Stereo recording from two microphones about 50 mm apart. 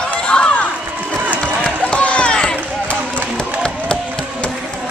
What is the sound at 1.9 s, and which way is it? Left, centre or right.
Run, left.